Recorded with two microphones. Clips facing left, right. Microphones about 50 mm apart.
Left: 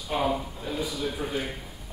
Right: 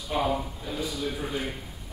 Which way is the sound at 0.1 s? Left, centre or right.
Centre.